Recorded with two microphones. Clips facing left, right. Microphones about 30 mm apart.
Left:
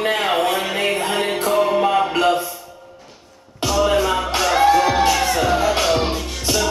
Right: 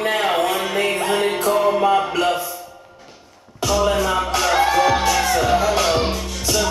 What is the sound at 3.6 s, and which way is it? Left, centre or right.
Music, centre.